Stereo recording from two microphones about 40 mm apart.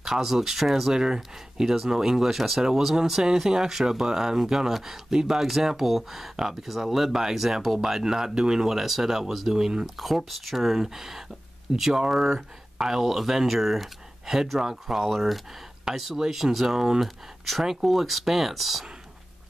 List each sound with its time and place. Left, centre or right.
0.0 s speech: centre
0.9 s speech: centre
9.8 s speech: centre
15.9 s speech: centre